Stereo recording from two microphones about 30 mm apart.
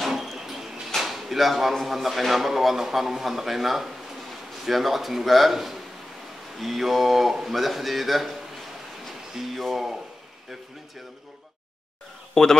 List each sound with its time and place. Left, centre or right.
0.0 s a sound: centre
0.8 s drawer open or close: centre
1.9 s a man's voice: centre
9.3 s a man's voice: centre
12.4 s speech: centre